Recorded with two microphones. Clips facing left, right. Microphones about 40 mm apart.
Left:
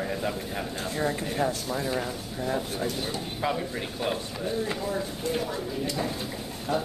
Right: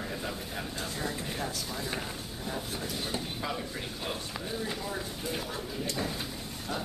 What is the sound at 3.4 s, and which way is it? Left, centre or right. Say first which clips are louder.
Speech: left 6 dB; centre.